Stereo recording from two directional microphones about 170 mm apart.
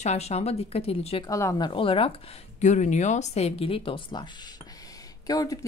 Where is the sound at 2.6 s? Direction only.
45° left (ahead or behind).